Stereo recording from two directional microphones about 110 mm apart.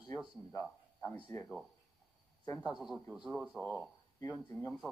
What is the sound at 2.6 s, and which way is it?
Speech, 5° right (ahead or behind).